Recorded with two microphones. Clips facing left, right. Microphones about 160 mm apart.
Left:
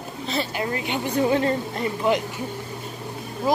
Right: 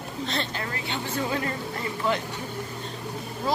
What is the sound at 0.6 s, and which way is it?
A woman's voice, 20° left (ahead or behind).